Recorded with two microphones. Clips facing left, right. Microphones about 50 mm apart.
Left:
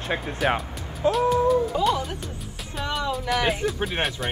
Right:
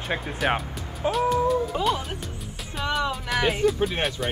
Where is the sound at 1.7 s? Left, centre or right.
Right.